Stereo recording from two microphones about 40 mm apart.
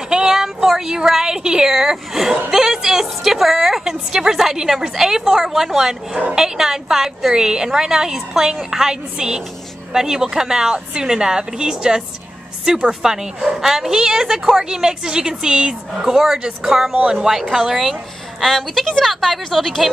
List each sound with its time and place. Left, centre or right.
0.1 s a sound: centre
2.5 s a woman's voice: centre
18.4 s a woman's voice: centre